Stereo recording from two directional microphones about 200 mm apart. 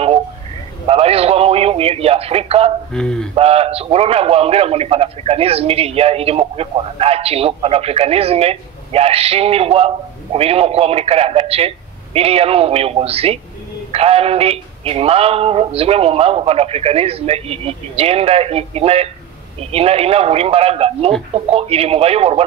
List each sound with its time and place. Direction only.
0.8 s radio: 30° right (ahead or behind)
2.9 s a sound: 5° left (ahead or behind)
3.3 s a man's voice: 30° right (ahead or behind)